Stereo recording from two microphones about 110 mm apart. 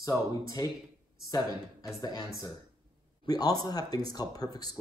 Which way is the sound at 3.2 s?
35° left (ahead or behind).